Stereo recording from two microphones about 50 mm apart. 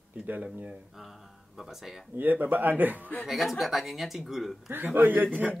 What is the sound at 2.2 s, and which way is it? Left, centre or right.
Speech, right.